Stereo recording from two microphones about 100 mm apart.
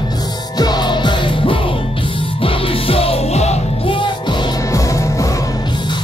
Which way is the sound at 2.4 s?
75° left (ahead or behind).